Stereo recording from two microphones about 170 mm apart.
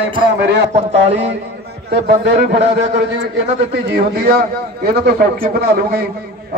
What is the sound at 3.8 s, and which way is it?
A man's voice, 75° right (ahead or behind).